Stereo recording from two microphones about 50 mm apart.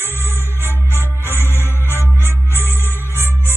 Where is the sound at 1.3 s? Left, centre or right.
Left.